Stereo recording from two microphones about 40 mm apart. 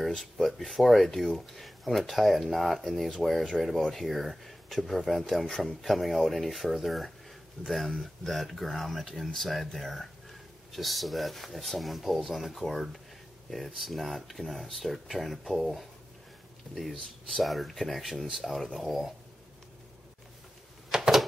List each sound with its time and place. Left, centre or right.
0.0 s speech: centre
16.7 s speech: left
17.3 s speech: centre
20.9 s a sound: centre